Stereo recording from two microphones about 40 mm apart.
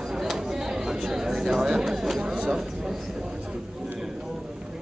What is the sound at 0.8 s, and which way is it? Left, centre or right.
Chatter, centre.